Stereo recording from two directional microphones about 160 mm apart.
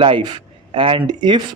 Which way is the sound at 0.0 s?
35° right (ahead or behind).